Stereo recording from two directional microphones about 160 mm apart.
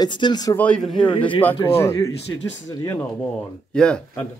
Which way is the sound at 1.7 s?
20° left (ahead or behind).